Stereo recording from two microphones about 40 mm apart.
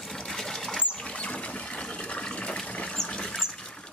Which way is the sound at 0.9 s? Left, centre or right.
Left.